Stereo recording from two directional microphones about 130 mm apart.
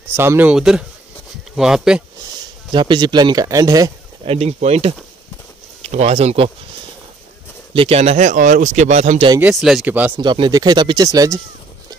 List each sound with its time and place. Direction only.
0.1 s speech: 20° right (ahead or behind)
2.7 s speech: 35° right (ahead or behind)
4.2 s speech: 50° right (ahead or behind)
7.7 s speech: 45° right (ahead or behind)
9.4 s speech: 5° right (ahead or behind)
10.1 s speech: 40° right (ahead or behind)